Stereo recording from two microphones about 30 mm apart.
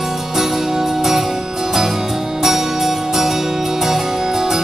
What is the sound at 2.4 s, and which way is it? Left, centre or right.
Music, centre.